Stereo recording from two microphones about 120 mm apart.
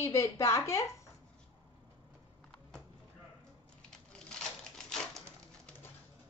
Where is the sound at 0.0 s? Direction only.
25° left (ahead or behind).